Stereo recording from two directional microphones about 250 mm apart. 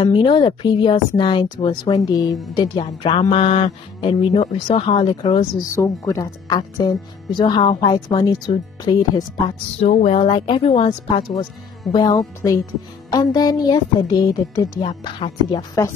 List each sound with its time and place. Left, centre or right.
0.0 s speech: centre
9.8 s a woman's voice: left